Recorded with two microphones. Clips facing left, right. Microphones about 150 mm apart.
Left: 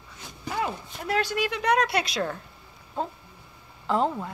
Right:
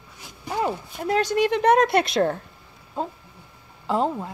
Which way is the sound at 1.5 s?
50° right (ahead or behind).